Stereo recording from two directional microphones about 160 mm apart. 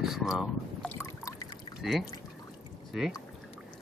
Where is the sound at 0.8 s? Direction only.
15° left (ahead or behind).